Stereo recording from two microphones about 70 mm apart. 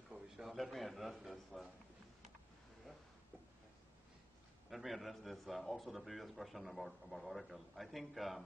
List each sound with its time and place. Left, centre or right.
0.1 s a sound: centre
0.5 s a man's voice: centre
4.6 s a man's voice: centre